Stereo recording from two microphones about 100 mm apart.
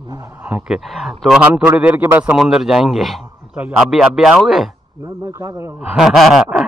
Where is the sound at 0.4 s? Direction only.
10° right (ahead or behind).